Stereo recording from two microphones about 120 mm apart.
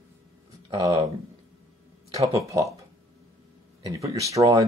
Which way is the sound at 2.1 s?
30° right (ahead or behind).